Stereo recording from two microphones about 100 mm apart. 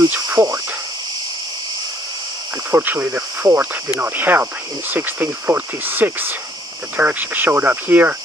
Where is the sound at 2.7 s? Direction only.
20° right (ahead or behind).